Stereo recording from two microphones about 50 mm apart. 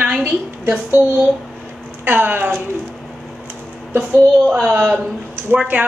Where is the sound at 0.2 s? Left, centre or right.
Right.